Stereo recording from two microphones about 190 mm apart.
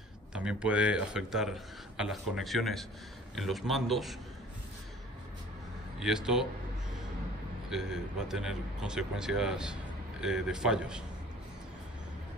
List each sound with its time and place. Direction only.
0.3 s a man's voice: 5° right (ahead or behind)
5.9 s a man's voice: 5° right (ahead or behind)
7.7 s a man's voice: 5° right (ahead or behind)